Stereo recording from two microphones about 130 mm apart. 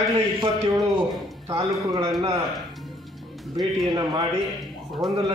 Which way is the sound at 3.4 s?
Centre (ahead or behind).